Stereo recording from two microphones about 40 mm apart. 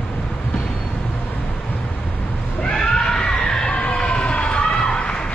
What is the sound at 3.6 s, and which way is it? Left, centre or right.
Crowd, left.